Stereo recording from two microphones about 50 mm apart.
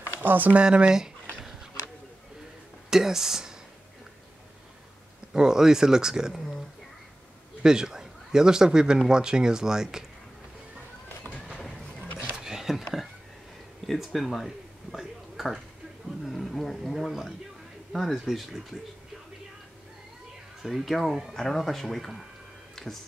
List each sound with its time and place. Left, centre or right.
0.2 s speech: right
0.6 s a sound: centre
2.9 s speech: centre
5.3 s a man's voice: centre
7.6 s a man's voice: centre
11.3 s a sound: left
12.4 s a sound: centre
13.8 s speech: centre
20.6 s speech: centre
22.8 s music: centre